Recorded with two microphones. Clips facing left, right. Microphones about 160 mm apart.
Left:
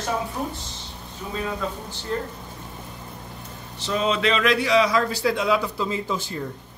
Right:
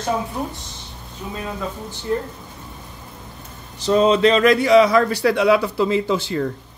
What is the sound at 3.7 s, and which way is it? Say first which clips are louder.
A man's voice: right 8 dB; 40° right (ahead or behind).